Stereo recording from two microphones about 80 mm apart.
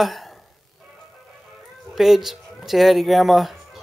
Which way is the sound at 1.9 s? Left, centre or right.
Centre.